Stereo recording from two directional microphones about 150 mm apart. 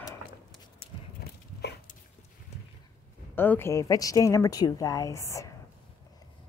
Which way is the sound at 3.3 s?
15° left (ahead or behind).